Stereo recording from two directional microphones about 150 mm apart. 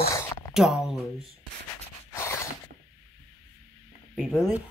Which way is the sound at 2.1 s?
20° left (ahead or behind).